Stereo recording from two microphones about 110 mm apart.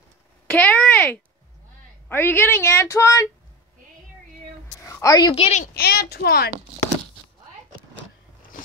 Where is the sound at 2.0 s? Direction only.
20° left (ahead or behind).